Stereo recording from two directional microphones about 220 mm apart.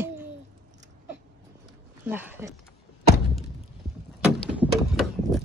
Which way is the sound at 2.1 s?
10° right (ahead or behind).